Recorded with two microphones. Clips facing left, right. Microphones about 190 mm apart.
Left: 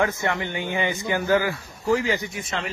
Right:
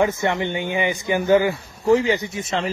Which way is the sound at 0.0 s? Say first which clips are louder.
Right 4 dB; 20° right (ahead or behind).